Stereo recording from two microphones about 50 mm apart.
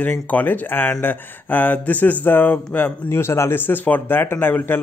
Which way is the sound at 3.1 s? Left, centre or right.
Left.